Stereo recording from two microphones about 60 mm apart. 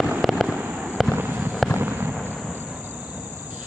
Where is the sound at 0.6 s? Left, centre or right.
Centre.